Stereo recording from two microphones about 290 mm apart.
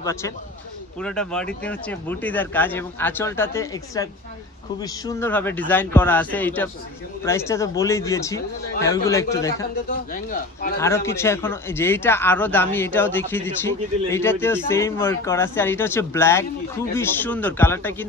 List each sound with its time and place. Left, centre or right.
0.0 s speech: centre
9.8 s speech: left
10.8 s speech: centre